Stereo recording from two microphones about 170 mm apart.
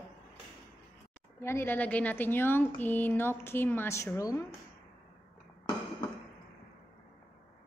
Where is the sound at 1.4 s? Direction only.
15° left (ahead or behind).